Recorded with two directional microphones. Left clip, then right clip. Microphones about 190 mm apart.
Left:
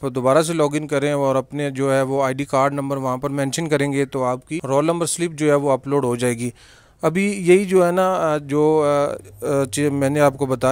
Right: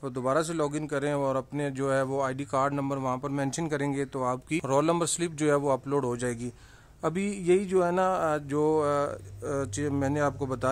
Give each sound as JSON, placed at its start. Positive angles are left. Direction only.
{"t": 0.0, "sound": "a man's voice", "side_deg": 35}